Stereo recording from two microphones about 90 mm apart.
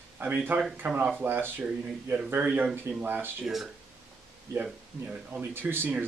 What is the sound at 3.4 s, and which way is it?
Speech, 5° right (ahead or behind).